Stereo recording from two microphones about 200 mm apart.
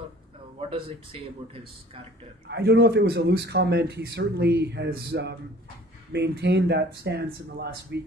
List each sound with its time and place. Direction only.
0.6 s a man's voice: 25° right (ahead or behind)
2.5 s speech: 55° right (ahead or behind)